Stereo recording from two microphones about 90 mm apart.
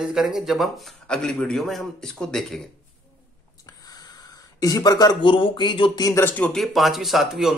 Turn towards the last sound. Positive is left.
turn(degrees=-5)  # may be behind; listen again after turning